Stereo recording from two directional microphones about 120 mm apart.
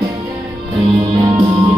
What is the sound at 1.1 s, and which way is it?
Music, 35° right (ahead or behind).